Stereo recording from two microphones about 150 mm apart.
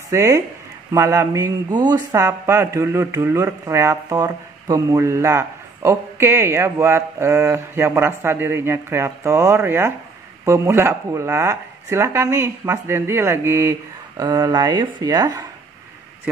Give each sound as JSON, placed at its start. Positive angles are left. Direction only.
{"t": 0.1, "sound": "speech", "side_deg": -20}